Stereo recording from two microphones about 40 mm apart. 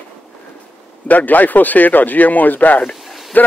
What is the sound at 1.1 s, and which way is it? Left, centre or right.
Speech, left.